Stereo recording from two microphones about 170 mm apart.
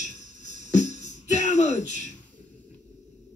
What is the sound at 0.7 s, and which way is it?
Music, 45° left (ahead or behind).